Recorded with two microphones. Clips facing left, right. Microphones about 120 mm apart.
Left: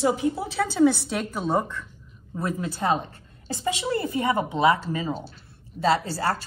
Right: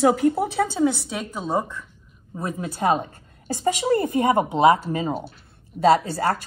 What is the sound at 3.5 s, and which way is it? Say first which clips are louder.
Speech: right 5 dB; 40° right (ahead or behind).